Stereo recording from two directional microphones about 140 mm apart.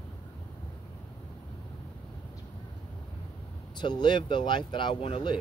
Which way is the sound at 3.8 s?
30° left (ahead or behind).